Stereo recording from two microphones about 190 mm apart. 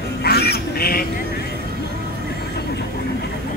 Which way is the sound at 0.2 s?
55° left (ahead or behind).